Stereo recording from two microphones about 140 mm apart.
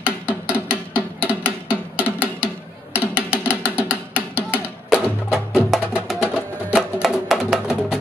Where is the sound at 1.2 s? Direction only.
15° left (ahead or behind).